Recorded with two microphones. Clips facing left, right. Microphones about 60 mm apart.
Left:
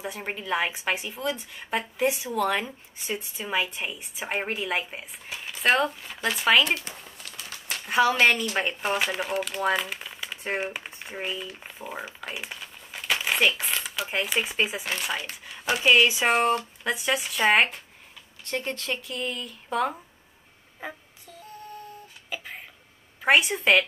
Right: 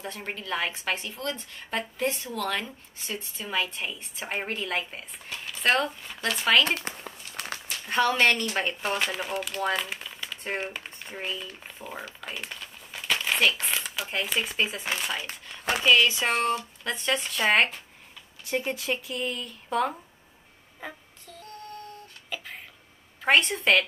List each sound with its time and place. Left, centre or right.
0.0 s a woman's voice: centre
7.2 s a sound: left
7.8 s a woman's voice: centre
9.8 s crumpling: centre
10.4 s typing: centre
14.0 s a woman's voice: centre
18.4 s speech: centre
20.8 s a sound: centre
23.2 s a woman's voice: centre